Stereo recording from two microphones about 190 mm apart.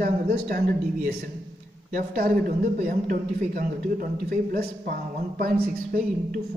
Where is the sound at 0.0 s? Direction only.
50° right (ahead or behind).